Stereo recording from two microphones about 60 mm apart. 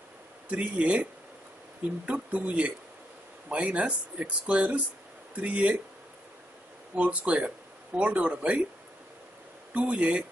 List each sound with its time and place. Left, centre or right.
0.5 s speech: right
2.0 s speech: right
7.0 s speech: centre
9.8 s speech: right